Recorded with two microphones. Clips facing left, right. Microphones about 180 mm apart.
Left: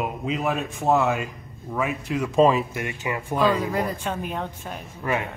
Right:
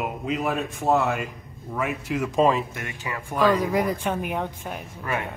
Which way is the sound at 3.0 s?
15° left (ahead or behind).